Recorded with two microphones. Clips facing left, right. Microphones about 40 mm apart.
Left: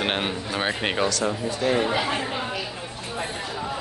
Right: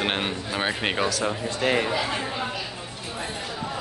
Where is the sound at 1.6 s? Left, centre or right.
Right.